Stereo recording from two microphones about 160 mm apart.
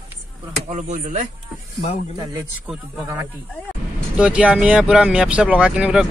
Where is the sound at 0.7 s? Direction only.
50° right (ahead or behind).